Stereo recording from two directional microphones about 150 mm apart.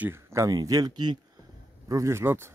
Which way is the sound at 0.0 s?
20° right (ahead or behind).